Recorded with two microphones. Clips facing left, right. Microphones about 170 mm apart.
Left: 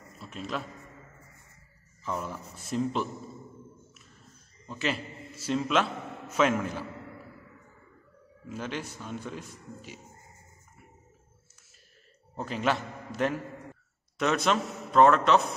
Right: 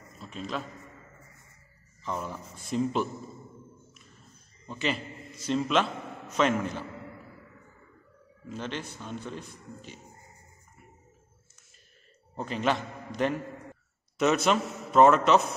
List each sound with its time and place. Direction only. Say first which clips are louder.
0.2 s a man's voice: even; 5° left (ahead or behind)
2.0 s a man's voice: even; centre (ahead or behind)
4.6 s a man's voice: right 1 dB; centre (ahead or behind)
8.5 s speech: even; 10° left (ahead or behind)
12.4 s a man's voice: right 1 dB; centre (ahead or behind)